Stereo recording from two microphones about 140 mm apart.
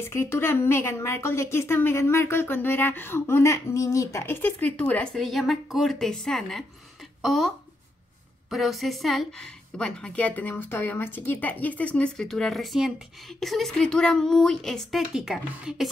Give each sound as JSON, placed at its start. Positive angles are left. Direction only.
{"t": 0.0, "sound": "a woman's voice", "side_deg": 20}